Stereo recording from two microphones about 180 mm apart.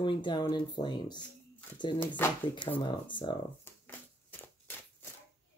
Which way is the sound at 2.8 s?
25° left (ahead or behind).